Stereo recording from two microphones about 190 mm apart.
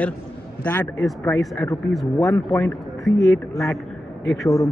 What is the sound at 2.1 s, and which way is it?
Speech, 10° left (ahead or behind).